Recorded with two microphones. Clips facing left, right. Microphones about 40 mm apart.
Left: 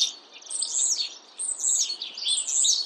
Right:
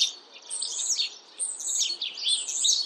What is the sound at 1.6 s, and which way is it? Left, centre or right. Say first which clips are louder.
Chirp: right 1 dB; centre.